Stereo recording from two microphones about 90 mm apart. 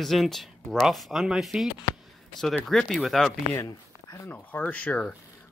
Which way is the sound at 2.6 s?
5° left (ahead or behind).